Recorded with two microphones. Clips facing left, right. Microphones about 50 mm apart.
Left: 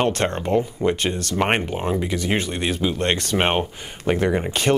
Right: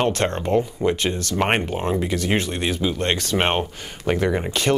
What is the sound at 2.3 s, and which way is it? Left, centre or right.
Speech, left.